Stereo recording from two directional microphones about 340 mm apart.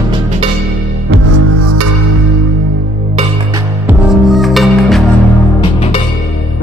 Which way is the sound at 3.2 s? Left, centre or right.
Centre.